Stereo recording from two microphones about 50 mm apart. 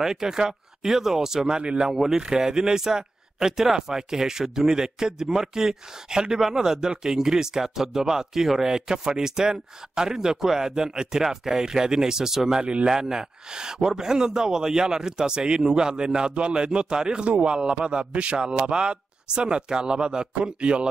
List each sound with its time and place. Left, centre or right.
0.0 s speech: centre